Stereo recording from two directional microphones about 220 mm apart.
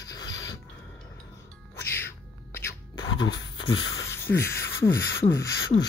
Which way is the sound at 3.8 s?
15° left (ahead or behind).